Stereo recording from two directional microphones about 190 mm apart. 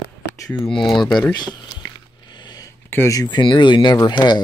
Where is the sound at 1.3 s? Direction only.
25° left (ahead or behind).